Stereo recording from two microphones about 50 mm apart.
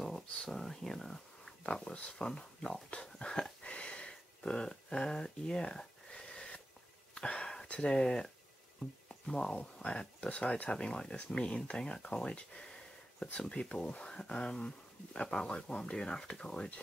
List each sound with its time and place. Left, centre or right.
0.3 s speech: centre
1.6 s speech: left
2.7 s a sound: left
7.2 s speech: centre
9.3 s speech: centre